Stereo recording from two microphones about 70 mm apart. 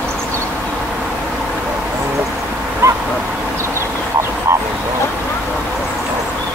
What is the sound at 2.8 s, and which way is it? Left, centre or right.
Bow-wow, right.